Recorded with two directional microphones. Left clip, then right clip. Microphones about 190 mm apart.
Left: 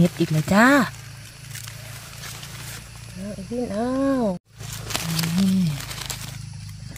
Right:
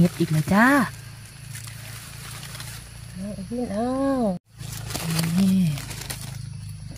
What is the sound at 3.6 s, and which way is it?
Speech, 25° left (ahead or behind).